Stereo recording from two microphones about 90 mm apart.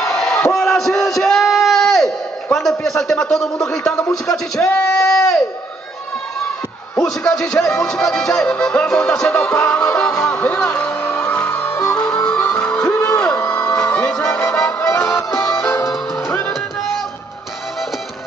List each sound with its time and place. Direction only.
0.1 s crowd: 5° left (ahead or behind)
0.6 s a sound: 5° left (ahead or behind)
4.3 s speech: 5° left (ahead or behind)
7.2 s music: 5° left (ahead or behind)
10.2 s speech: 10° left (ahead or behind)
11.1 s music: 10° left (ahead or behind)
14.8 s music: 30° left (ahead or behind)